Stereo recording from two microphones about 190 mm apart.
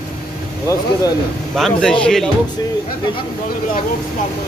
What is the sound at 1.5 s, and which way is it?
Speech, centre (ahead or behind).